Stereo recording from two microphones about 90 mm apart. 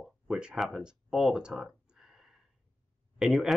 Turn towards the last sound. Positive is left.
turn(degrees=0)  # may be behind; listen again after turning